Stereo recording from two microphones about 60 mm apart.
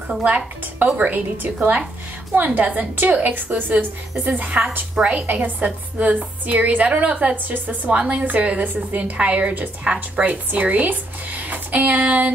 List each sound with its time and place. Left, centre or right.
0.1 s a woman's voice: right
7.4 s a woman's voice: right